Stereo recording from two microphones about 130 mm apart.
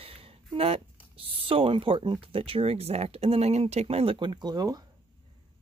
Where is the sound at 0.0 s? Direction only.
50° right (ahead or behind).